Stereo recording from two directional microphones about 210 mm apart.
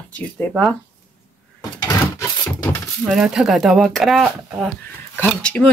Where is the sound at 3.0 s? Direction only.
Centre (ahead or behind).